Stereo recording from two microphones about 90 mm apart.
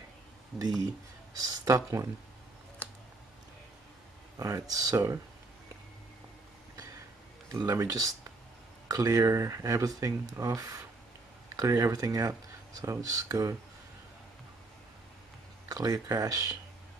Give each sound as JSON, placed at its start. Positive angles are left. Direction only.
{"t": 0.5, "sound": "speech", "side_deg": 0}
{"t": 1.4, "sound": "speech", "side_deg": -40}
{"t": 2.8, "sound": "a sound", "side_deg": 15}
{"t": 4.4, "sound": "speech", "side_deg": -35}
{"t": 7.6, "sound": "speech", "side_deg": -40}
{"t": 15.7, "sound": "speech", "side_deg": -45}